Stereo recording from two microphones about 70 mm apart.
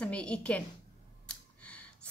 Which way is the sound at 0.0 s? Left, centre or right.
Centre.